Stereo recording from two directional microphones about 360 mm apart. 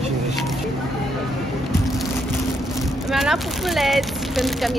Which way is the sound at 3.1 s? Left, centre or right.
Centre.